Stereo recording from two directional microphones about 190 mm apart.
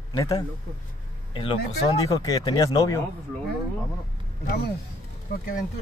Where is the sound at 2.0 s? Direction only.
20° left (ahead or behind).